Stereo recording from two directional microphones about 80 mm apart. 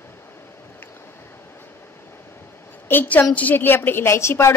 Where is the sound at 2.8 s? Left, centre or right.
Left.